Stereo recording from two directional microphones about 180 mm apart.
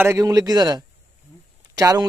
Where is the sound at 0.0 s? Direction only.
15° right (ahead or behind).